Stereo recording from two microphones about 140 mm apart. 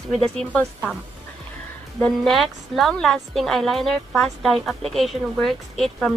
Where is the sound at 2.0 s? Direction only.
Centre (ahead or behind).